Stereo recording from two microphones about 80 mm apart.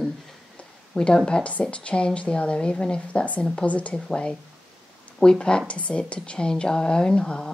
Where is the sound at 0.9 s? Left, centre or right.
Centre.